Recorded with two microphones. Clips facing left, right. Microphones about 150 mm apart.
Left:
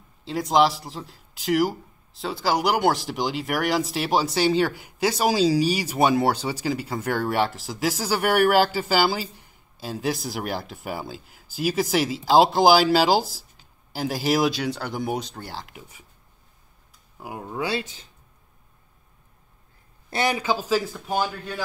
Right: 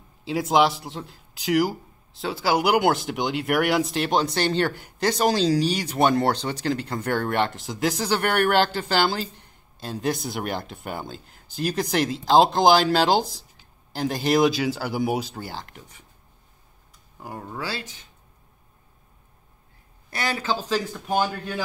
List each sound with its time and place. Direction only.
0.2 s speech: 5° right (ahead or behind)
17.2 s a man's voice: 10° left (ahead or behind)
17.6 s speech: 25° left (ahead or behind)
20.1 s a man's voice: 20° left (ahead or behind); by 21.5 s centre (ahead or behind)